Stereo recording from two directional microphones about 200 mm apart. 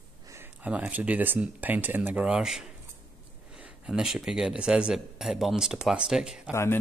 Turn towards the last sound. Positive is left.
turn(degrees=15)  # may be behind; listen again after turning